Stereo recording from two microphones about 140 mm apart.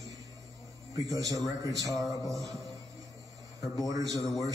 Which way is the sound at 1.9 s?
Centre (ahead or behind).